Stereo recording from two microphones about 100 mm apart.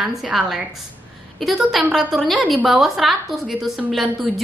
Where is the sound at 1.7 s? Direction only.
Centre (ahead or behind).